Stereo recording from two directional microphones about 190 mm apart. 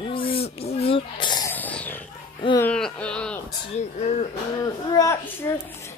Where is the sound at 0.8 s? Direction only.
25° left (ahead or behind).